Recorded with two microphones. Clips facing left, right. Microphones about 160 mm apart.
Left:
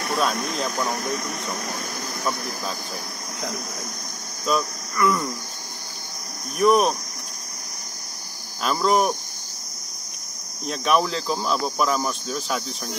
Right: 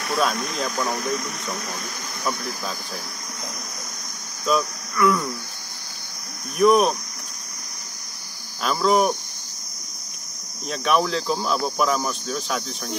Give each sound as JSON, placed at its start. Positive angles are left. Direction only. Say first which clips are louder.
{"t": 4.5, "sound": "speech", "louder": "right 2 dB", "side_deg": 0}
{"t": 6.6, "sound": "speech", "louder": "right 1 dB", "side_deg": 0}
{"t": 8.6, "sound": "speech", "louder": "right 1 dB", "side_deg": 0}
{"t": 10.7, "sound": "speech", "louder": "even", "side_deg": 0}